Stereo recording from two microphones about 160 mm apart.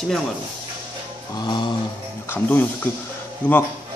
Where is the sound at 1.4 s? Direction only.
25° left (ahead or behind).